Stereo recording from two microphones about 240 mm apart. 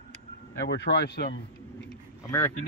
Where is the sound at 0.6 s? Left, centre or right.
Left.